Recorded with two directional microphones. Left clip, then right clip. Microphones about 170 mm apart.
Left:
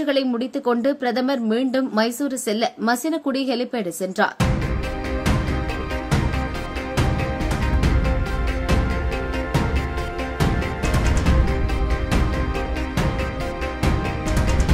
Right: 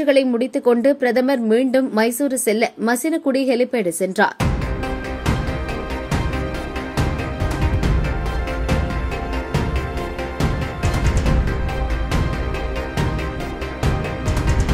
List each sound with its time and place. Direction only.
0.0 s speech: 15° right (ahead or behind)